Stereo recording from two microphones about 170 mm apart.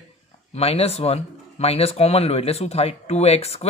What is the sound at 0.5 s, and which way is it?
Speech, 35° left (ahead or behind).